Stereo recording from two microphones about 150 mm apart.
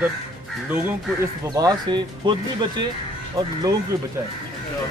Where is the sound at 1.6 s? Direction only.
25° right (ahead or behind).